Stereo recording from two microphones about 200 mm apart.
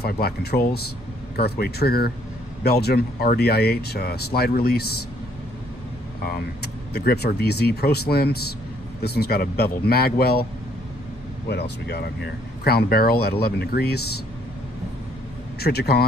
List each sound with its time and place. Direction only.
0.0 s speech: 55° left (ahead or behind)
6.2 s speech: 55° left (ahead or behind)
11.4 s speech: 55° left (ahead or behind)
15.6 s speech: 55° left (ahead or behind)